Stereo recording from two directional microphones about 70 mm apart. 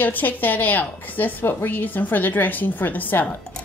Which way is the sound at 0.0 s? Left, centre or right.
Left.